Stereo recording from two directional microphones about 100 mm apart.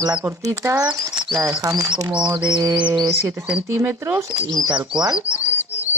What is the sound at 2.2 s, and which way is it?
Speech, 50° right (ahead or behind).